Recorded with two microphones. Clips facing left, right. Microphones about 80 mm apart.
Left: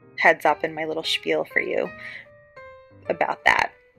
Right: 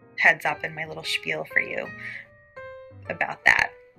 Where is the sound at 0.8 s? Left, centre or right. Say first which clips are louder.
Left 7 dB; left.